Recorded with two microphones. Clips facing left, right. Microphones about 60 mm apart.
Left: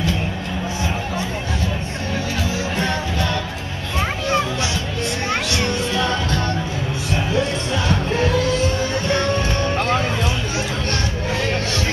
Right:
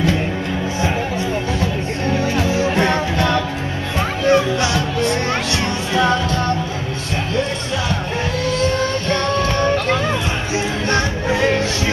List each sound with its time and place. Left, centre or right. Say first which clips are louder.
2.4 s music: right 6 dB; right